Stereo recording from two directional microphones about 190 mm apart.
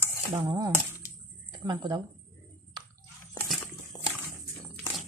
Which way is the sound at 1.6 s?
20° right (ahead or behind).